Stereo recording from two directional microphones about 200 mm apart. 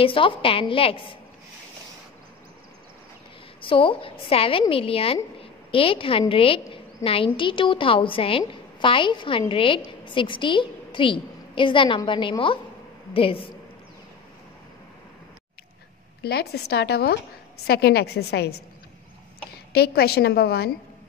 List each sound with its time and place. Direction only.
0.0 s a woman's voice: 25° left (ahead or behind)
3.6 s a woman's voice: 25° left (ahead or behind)
16.2 s a woman's voice: 55° left (ahead or behind)
19.7 s a woman's voice: 50° left (ahead or behind)